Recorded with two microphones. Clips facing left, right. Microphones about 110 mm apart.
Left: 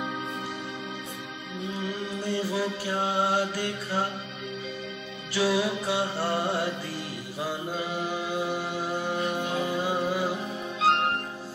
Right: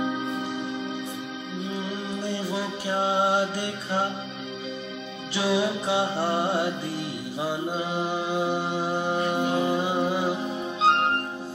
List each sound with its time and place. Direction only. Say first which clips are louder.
2.2 s music: left 2 dB; 20° right (ahead or behind)
5.3 s music: right 1 dB; 20° right (ahead or behind)